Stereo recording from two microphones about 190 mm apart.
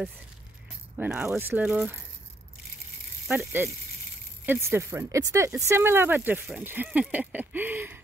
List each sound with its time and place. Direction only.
0.9 s speech: 5° right (ahead or behind)
3.3 s speech: 10° right (ahead or behind)